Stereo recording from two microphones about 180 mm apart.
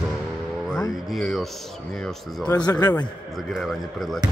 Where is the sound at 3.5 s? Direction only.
Centre (ahead or behind).